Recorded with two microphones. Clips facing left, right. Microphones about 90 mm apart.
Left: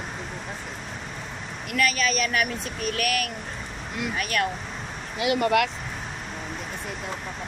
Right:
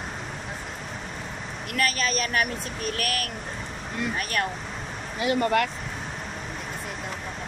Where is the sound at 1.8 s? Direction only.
35° right (ahead or behind).